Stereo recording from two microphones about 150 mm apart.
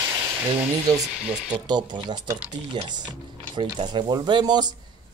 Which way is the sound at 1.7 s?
30° right (ahead or behind).